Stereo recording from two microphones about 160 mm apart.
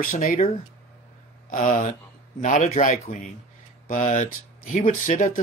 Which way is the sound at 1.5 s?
55° left (ahead or behind).